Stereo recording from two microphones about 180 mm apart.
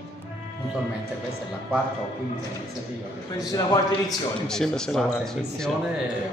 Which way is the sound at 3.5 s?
20° left (ahead or behind).